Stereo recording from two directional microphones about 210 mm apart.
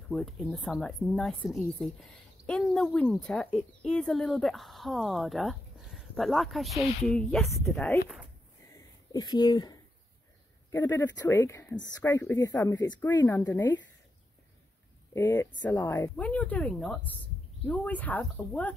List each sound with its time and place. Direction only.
0.1 s a woman's voice: centre (ahead or behind)
8.7 s a sound: 20° left (ahead or behind)
10.7 s speech: 15° left (ahead or behind)
15.1 s speech: 10° left (ahead or behind)